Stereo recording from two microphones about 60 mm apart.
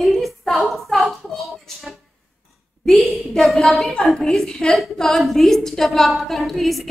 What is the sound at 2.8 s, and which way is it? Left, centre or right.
A woman's voice, centre.